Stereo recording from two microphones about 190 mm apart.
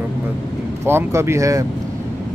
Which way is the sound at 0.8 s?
15° right (ahead or behind).